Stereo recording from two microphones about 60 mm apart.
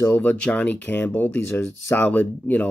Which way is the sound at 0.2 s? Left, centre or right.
Left.